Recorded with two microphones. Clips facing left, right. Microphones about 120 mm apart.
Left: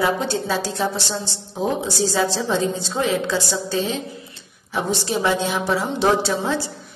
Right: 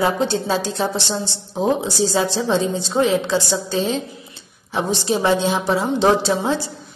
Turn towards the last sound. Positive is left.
turn(degrees=-20)  # may be behind; listen again after turning